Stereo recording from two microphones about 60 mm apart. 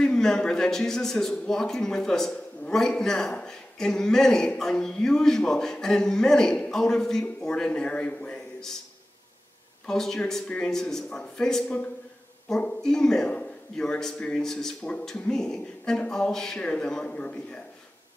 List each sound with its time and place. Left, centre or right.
0.0 s a man's voice: centre
9.8 s a man's voice: centre